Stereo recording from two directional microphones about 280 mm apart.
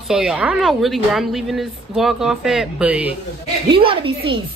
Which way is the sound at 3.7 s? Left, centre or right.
Centre.